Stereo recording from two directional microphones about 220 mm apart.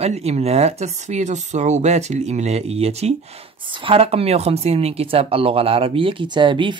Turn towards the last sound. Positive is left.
turn(degrees=-20)  # may be behind; listen again after turning